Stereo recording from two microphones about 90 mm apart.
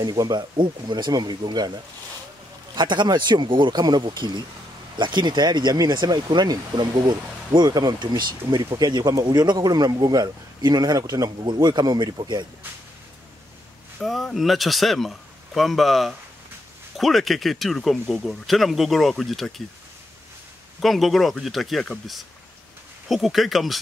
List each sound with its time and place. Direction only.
0.0 s speech: 50° right (ahead or behind)
2.7 s speech: 55° right (ahead or behind)
14.0 s speech: centre (ahead or behind)
20.8 s speech: centre (ahead or behind)